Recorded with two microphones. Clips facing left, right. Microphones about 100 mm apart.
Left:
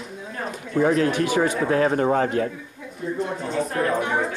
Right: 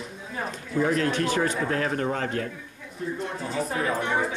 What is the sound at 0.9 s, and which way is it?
Speech, 10° left (ahead or behind).